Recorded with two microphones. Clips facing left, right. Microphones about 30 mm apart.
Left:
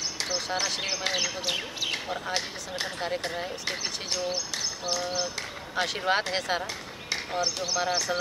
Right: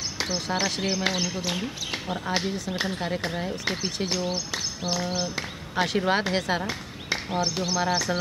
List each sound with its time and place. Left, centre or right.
0.3 s speech: centre
1.4 s speech: centre
1.9 s speech: centre
6.6 s speech: centre